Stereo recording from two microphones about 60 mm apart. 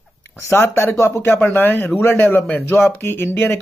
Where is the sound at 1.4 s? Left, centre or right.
Left.